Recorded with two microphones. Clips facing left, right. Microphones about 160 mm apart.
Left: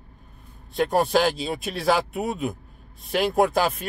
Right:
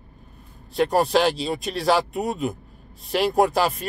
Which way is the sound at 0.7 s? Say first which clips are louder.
Right 1 dB; centre (ahead or behind).